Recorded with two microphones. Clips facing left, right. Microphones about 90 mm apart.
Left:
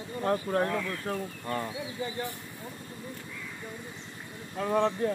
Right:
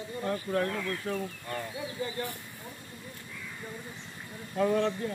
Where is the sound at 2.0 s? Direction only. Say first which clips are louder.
Even; 20° left (ahead or behind).